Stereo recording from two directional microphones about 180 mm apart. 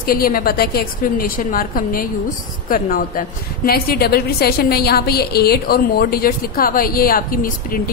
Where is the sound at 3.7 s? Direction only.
60° left (ahead or behind).